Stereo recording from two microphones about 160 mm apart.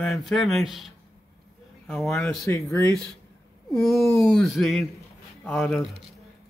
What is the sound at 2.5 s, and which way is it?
Speech, 15° left (ahead or behind).